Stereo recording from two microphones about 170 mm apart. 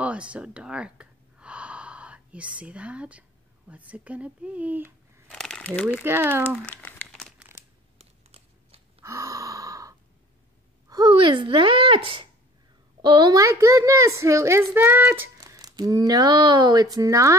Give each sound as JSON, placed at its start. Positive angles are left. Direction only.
{"t": 0.0, "sound": "speech", "side_deg": -5}
{"t": 5.3, "sound": "crumpling", "side_deg": 5}
{"t": 6.0, "sound": "speech", "side_deg": -15}
{"t": 6.5, "sound": "crumpling", "side_deg": 5}
{"t": 8.0, "sound": "a sound", "side_deg": -35}
{"t": 9.0, "sound": "gasp", "side_deg": -15}
{"t": 10.9, "sound": "a child's voice", "side_deg": -25}